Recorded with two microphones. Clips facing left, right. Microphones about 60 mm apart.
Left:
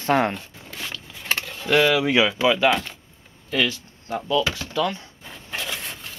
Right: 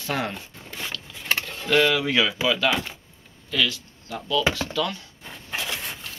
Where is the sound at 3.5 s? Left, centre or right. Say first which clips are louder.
Left 2 dB; left.